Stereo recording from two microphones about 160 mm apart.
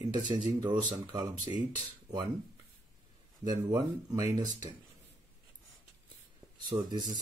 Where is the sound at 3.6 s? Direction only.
25° right (ahead or behind).